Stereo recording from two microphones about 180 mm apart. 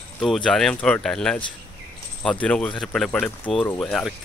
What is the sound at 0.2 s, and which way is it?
Speech, 5° left (ahead or behind).